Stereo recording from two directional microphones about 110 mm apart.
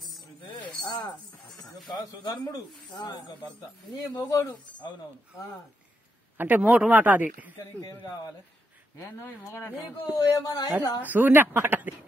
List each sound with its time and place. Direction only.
0.4 s a sound: 50° left (ahead or behind)
2.0 s speech: 35° left (ahead or behind)
6.3 s a man's voice: 15° right (ahead or behind)
7.5 s speech: 30° left (ahead or behind)
10.0 s speech: 35° left (ahead or behind)
11.1 s a man's voice: 20° right (ahead or behind)